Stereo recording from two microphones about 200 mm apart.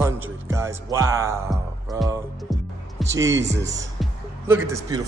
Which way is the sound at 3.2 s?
65° right (ahead or behind).